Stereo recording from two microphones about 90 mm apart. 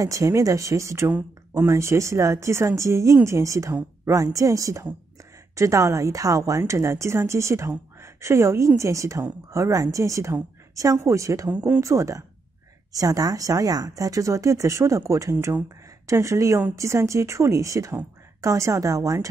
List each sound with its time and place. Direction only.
0.0 s a woman's voice: 35° right (ahead or behind)
11.5 s speech: 20° right (ahead or behind)
11.8 s speech: 35° right (ahead or behind)